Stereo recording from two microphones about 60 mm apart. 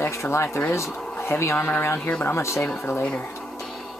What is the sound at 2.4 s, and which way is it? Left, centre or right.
Speech, left.